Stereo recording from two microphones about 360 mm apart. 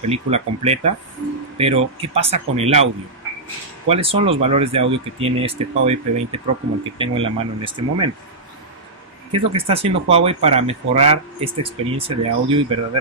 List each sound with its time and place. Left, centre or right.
0.1 s speech: centre
9.3 s speech: centre